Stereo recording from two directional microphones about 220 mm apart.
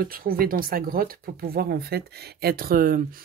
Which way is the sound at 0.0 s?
40° right (ahead or behind).